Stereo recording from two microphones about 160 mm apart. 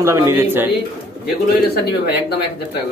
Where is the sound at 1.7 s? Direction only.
90° left.